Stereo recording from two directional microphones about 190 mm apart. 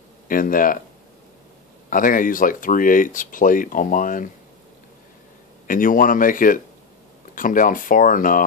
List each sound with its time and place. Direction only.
0.3 s speech: 45° left (ahead or behind)
1.9 s speech: 45° left (ahead or behind)
5.7 s speech: 45° left (ahead or behind)